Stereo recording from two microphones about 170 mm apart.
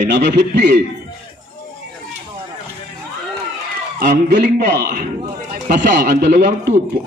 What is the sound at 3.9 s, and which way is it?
A man's voice, 65° right (ahead or behind).